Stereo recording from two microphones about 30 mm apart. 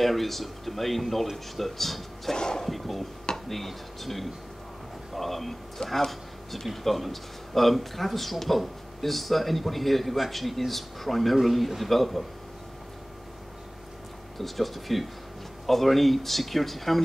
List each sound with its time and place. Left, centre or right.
0.0 s speech: centre
2.3 s speech: left
2.6 s speech: centre
14.4 s speech: centre